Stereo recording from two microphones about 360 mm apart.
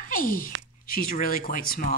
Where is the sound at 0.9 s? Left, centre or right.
Left.